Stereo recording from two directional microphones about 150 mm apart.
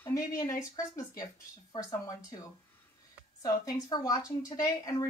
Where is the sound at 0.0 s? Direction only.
20° left (ahead or behind).